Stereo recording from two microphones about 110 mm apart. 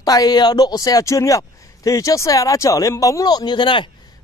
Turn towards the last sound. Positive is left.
turn(degrees=50)  # may be behind; listen again after turning